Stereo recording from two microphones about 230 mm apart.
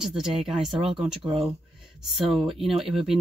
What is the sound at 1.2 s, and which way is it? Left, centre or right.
Speech, right.